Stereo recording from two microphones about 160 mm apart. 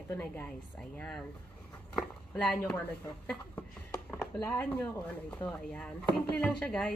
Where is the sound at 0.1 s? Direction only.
10° left (ahead or behind).